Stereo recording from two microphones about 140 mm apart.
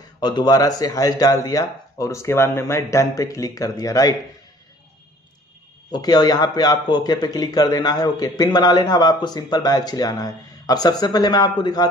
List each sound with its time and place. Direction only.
0.2 s a man's voice: 30° left (ahead or behind)
5.9 s a man's voice: 30° left (ahead or behind)